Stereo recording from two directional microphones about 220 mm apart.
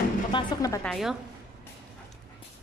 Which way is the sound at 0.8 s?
Centre (ahead or behind).